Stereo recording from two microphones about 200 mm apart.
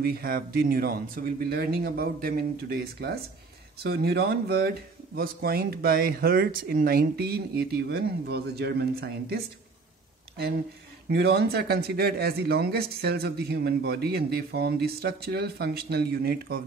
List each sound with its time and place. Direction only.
0.0 s speech: 50° right (ahead or behind)
11.1 s speech: 55° right (ahead or behind)